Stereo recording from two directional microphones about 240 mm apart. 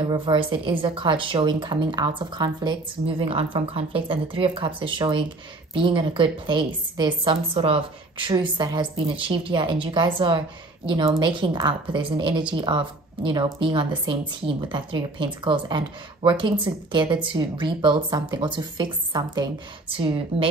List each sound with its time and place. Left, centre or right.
0.0 s a woman's voice: right